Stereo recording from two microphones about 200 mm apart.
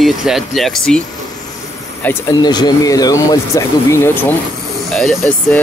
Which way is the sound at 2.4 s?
20° left (ahead or behind).